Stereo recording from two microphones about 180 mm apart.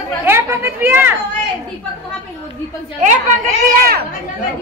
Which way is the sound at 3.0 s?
45° right (ahead or behind).